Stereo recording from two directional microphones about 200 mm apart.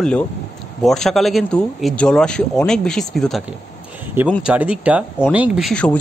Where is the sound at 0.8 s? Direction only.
Centre (ahead or behind).